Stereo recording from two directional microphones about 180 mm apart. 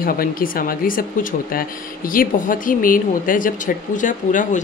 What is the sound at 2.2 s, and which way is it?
Speech, 50° left (ahead or behind).